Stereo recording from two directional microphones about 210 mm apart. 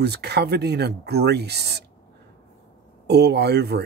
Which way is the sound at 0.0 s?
50° right (ahead or behind).